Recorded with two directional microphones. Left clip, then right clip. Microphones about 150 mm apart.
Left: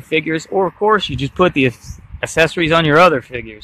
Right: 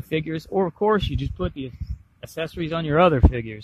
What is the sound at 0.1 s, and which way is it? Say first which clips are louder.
Speech: left 9 dB; 15° right (ahead or behind).